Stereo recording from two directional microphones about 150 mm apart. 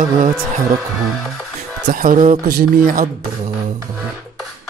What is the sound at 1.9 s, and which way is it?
Speech, 70° right (ahead or behind).